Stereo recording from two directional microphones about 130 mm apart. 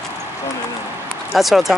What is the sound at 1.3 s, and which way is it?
Speech, centre (ahead or behind).